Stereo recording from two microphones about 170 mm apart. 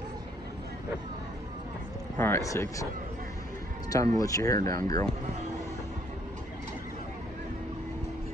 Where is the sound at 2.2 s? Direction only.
15° left (ahead or behind).